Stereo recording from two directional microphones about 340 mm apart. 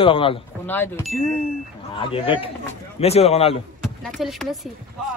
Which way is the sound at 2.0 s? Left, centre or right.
Centre.